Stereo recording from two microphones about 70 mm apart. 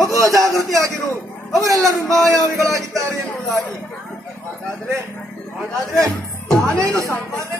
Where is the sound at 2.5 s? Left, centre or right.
Right.